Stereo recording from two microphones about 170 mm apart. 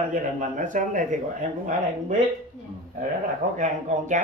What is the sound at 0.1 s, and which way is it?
Speech, 50° right (ahead or behind).